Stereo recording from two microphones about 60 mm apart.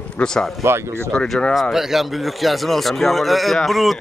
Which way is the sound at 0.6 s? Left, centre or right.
Right.